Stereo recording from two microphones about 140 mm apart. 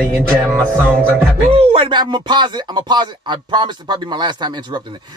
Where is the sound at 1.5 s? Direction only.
40° right (ahead or behind).